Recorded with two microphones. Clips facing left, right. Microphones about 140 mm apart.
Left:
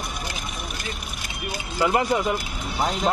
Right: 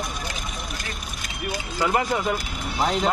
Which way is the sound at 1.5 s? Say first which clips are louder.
Left 1 dB; 30° left (ahead or behind).